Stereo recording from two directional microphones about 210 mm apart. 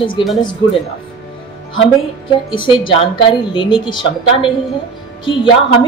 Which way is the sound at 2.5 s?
25° left (ahead or behind).